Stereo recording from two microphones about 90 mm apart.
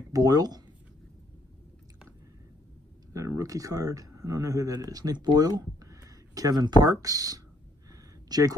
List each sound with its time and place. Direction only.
0.1 s speech: 45° right (ahead or behind)
3.1 s speech: 35° right (ahead or behind)
7.9 s a sound: 45° right (ahead or behind)